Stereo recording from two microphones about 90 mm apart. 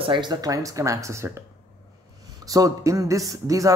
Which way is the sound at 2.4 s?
40° right (ahead or behind).